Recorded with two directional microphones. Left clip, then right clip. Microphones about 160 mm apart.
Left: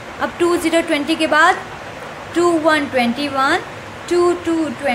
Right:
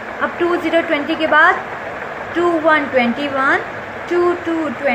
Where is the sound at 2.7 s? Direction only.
30° left (ahead or behind).